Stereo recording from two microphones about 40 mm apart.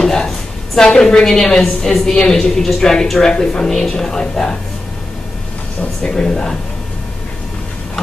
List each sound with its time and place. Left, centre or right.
0.0 s a sound: centre
0.7 s a woman's voice: centre
6.0 s a woman's voice: centre